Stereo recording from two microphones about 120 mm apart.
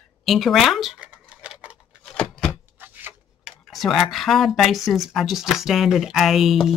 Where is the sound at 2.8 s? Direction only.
15° right (ahead or behind).